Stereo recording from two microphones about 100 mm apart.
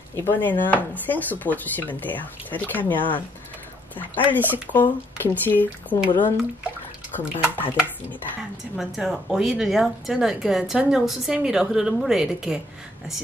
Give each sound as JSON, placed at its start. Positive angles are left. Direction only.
{"t": 0.1, "sound": "speech", "side_deg": 20}
{"t": 4.3, "sound": "speech", "side_deg": 20}
{"t": 7.2, "sound": "speech", "side_deg": 20}
{"t": 8.7, "sound": "a woman's voice", "side_deg": 0}